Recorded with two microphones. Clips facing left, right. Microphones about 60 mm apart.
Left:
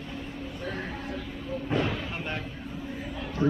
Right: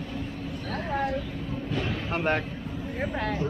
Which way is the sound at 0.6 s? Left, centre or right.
Right.